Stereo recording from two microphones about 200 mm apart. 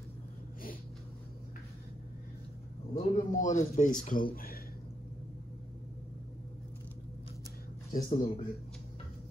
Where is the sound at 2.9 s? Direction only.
40° left (ahead or behind).